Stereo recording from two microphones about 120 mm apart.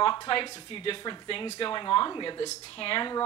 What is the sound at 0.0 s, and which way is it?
A woman's voice, 35° left (ahead or behind).